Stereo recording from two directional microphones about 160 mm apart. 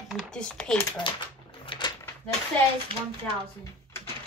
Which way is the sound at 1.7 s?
30° left (ahead or behind).